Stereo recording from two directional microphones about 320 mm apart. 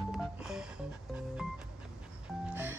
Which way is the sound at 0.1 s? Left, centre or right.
Centre.